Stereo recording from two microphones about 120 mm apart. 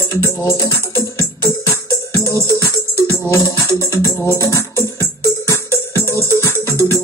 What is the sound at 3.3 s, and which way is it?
Music, 25° left (ahead or behind).